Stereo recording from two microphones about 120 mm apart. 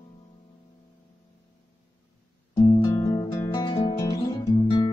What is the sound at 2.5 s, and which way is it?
Music, 30° left (ahead or behind).